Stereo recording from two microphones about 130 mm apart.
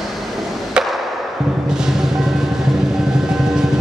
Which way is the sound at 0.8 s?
5° right (ahead or behind).